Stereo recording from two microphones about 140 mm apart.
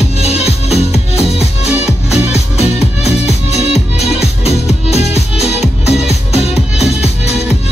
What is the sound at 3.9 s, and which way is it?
Music, 50° left (ahead or behind).